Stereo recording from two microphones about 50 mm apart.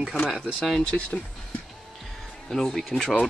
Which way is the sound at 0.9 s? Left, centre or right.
Left.